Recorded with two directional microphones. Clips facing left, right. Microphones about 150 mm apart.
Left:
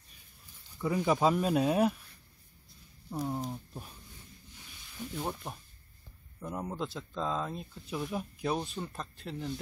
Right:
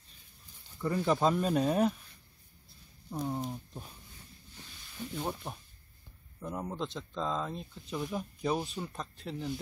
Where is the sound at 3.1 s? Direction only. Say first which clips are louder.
Even; 5° left (ahead or behind).